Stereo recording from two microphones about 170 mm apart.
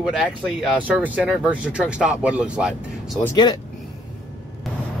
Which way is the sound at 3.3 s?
25° left (ahead or behind).